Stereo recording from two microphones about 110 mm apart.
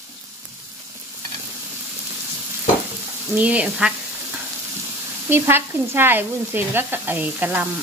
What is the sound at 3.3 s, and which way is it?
Speech, 10° right (ahead or behind).